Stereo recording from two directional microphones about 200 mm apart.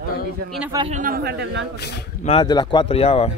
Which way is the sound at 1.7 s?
55° left (ahead or behind).